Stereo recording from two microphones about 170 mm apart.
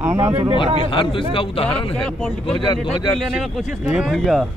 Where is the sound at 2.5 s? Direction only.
25° left (ahead or behind).